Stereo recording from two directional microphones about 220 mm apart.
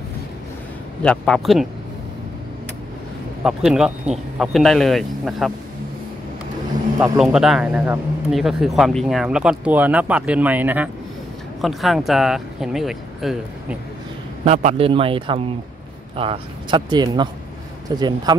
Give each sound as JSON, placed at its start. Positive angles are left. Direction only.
{"t": 1.0, "sound": "speech", "side_deg": 5}
{"t": 3.4, "sound": "speech", "side_deg": 0}
{"t": 7.2, "sound": "speech", "side_deg": 0}
{"t": 14.4, "sound": "speech", "side_deg": -30}